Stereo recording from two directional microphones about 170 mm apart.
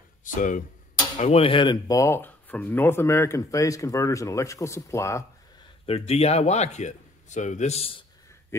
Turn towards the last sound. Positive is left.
turn(degrees=40)  # may be behind; listen again after turning